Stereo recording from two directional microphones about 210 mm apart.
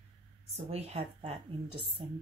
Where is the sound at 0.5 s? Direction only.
30° right (ahead or behind).